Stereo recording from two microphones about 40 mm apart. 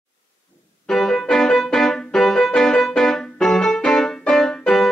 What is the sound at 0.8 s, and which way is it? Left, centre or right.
Music, centre.